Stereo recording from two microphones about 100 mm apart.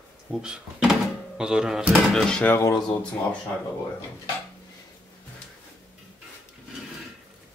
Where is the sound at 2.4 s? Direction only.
25° left (ahead or behind).